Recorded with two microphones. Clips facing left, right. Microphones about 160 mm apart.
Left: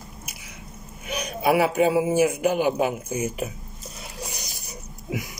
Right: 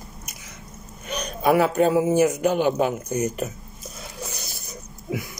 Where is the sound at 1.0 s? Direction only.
10° left (ahead or behind).